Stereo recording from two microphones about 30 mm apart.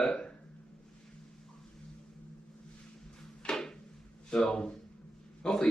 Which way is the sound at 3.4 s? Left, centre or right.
Left.